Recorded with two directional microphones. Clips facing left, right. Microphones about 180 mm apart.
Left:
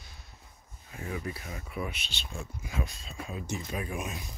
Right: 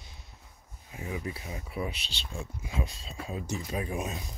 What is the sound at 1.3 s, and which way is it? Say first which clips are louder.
Speech: right 1 dB; 20° right (ahead or behind).